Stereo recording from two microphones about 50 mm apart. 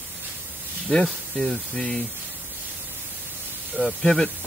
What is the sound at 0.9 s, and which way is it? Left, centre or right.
Speech, centre.